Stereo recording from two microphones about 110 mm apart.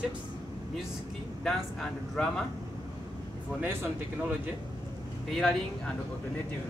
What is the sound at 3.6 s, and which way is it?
Speech, 20° right (ahead or behind).